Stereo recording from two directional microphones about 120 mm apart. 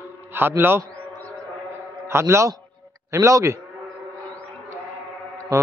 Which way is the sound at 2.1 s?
25° right (ahead or behind).